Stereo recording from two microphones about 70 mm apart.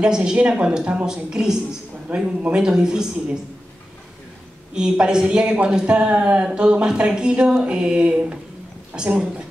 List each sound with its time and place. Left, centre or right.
0.0 s a woman's voice: centre
4.7 s a woman's voice: centre